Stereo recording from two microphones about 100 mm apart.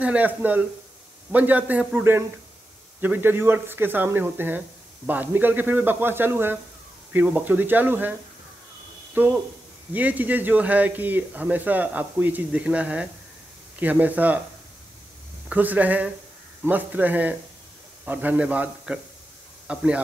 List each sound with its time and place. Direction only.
0.0 s speech: 15° right (ahead or behind)
15.4 s speech: 15° right (ahead or behind)